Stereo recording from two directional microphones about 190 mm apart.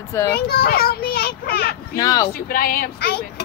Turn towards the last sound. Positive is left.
turn(degrees=55)  # may be behind; listen again after turning